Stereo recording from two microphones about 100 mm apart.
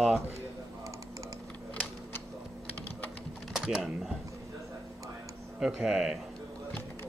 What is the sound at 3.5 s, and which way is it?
Speech, 5° right (ahead or behind).